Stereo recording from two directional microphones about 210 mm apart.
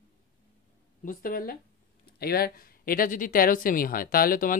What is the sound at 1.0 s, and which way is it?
Speech, 40° left (ahead or behind).